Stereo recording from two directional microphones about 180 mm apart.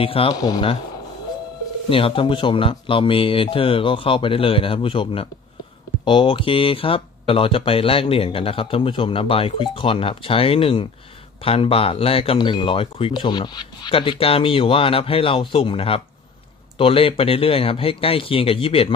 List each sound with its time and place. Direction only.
0.0 s speech: 30° left (ahead or behind)
1.9 s speech: 30° left (ahead or behind)